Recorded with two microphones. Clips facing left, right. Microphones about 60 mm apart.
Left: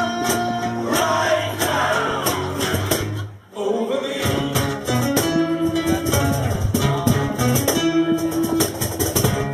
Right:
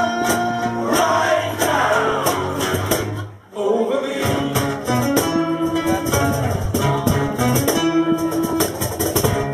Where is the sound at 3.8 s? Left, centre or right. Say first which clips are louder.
Right 3 dB; centre.